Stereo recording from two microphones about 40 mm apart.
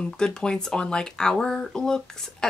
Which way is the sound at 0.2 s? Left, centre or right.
Centre.